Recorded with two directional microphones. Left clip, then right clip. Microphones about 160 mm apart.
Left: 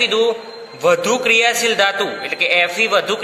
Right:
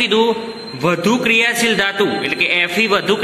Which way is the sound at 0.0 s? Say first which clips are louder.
Right 1 dB; centre (ahead or behind).